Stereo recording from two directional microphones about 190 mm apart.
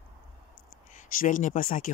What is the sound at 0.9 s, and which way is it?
Speech, 45° left (ahead or behind).